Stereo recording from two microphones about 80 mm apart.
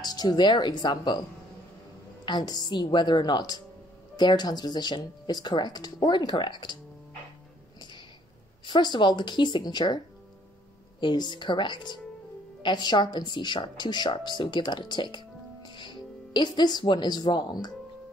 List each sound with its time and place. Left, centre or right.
0.0 s speech: left
2.2 s speech: left
8.6 s speech: left
11.0 s a woman's voice: left